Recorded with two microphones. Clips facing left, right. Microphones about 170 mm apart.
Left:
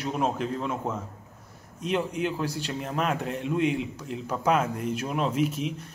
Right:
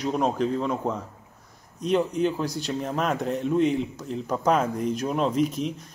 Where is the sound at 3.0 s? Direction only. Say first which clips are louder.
Even; 35° right (ahead or behind).